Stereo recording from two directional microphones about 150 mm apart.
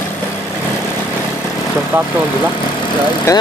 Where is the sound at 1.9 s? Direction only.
10° right (ahead or behind).